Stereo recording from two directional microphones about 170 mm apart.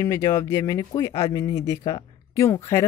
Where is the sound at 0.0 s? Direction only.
15° left (ahead or behind).